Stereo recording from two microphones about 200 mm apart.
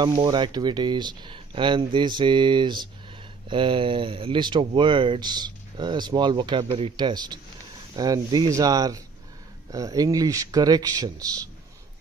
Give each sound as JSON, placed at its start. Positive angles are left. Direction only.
{"t": 0.0, "sound": "speech", "side_deg": -20}